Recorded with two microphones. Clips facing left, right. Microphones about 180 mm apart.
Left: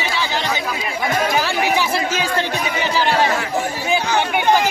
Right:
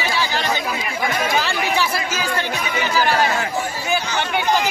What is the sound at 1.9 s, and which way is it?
Speech, 30° left (ahead or behind).